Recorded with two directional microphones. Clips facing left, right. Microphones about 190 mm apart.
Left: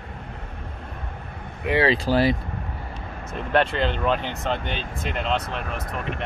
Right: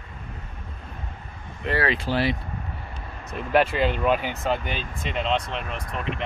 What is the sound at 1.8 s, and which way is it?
Speech, 35° left (ahead or behind).